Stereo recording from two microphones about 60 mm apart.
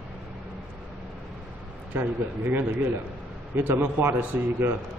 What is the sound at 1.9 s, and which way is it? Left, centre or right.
A man's voice, right.